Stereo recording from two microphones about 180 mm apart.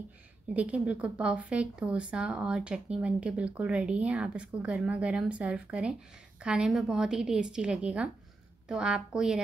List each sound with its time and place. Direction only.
0.6 s a woman's voice: 5° right (ahead or behind)